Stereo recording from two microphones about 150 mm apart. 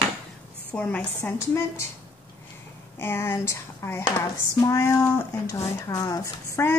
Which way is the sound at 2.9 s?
15° left (ahead or behind).